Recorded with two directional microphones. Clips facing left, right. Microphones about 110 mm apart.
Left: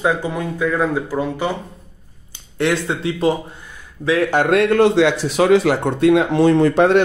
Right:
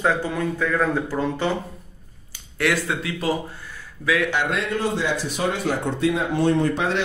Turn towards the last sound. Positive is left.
turn(degrees=60)  # may be behind; listen again after turning